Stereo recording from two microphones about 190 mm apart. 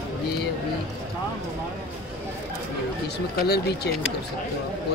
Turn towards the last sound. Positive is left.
turn(degrees=60)  # may be behind; listen again after turning